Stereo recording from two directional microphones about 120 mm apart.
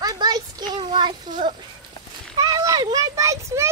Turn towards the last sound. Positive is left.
turn(degrees=-25)  # may be behind; listen again after turning